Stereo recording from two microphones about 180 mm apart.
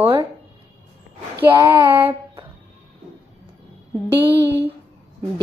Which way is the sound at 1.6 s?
15° right (ahead or behind).